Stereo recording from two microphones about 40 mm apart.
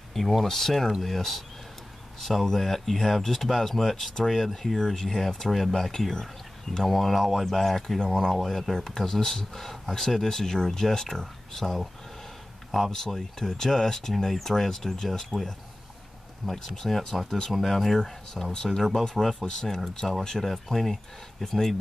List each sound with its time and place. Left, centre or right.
0.1 s speech: centre
12.9 s speech: centre
16.7 s speech: centre
18.5 s speech: centre
18.8 s speech: centre
19.0 s speech: centre
20.0 s speech: centre